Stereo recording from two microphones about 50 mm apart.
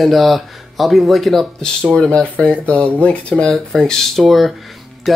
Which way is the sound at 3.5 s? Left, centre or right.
Centre.